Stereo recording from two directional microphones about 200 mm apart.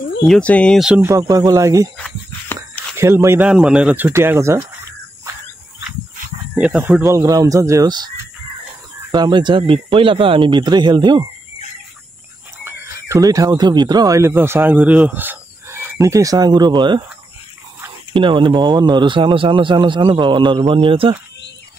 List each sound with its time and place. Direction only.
0.2 s speech: 5° left (ahead or behind)
1.1 s speech: 20° right (ahead or behind)
2.0 s dog: 10° left (ahead or behind)
3.0 s speech: 15° right (ahead or behind)
6.5 s speech: 5° right (ahead or behind)
9.1 s speech: 20° right (ahead or behind)
12.6 s speech: 15° right (ahead or behind)
18.1 s speech: 25° right (ahead or behind)